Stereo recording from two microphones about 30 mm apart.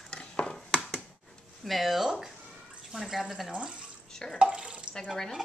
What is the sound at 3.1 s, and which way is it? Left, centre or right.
Speech, centre.